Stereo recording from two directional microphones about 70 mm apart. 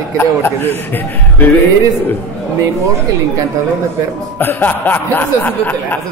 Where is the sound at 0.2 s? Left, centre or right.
Left.